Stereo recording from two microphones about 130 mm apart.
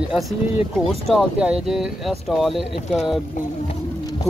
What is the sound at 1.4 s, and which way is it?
Speech, 5° right (ahead or behind).